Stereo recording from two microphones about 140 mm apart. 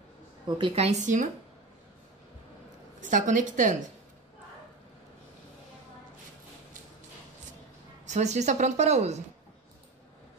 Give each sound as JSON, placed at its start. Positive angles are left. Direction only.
{"t": 0.6, "sound": "a woman's voice", "side_deg": -40}
{"t": 1.0, "sound": "speech", "side_deg": -65}
{"t": 3.0, "sound": "a woman's voice", "side_deg": -65}
{"t": 8.1, "sound": "a woman's voice", "side_deg": -55}